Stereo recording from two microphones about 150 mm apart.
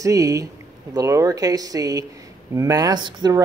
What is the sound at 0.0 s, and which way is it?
Speech, 20° right (ahead or behind).